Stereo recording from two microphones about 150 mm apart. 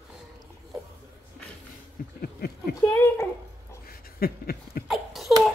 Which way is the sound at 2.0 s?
70° left (ahead or behind).